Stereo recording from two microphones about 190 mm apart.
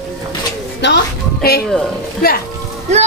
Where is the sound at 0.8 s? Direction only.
65° left (ahead or behind).